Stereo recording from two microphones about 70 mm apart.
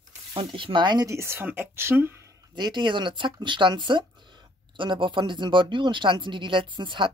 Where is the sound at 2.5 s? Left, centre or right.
Right.